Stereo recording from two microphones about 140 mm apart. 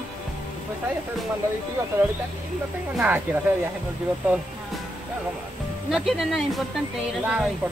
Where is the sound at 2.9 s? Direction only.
10° right (ahead or behind).